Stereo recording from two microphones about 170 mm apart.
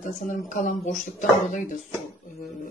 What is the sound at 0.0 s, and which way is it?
Speech, 50° left (ahead or behind).